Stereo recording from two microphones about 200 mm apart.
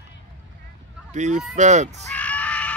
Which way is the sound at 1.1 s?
35° right (ahead or behind).